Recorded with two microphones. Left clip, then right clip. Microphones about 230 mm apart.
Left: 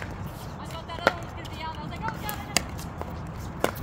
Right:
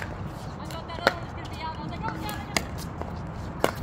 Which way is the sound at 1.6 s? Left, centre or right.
Left.